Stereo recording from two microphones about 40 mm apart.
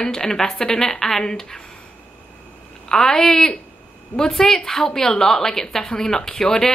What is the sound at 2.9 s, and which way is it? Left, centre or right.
A woman's voice, centre.